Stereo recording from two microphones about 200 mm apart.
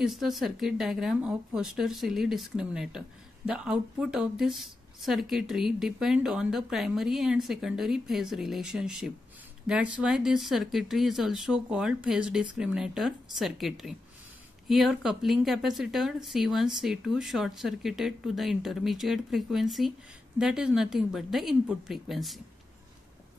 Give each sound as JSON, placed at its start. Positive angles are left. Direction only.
{"t": 0.0, "sound": "speech", "side_deg": 0}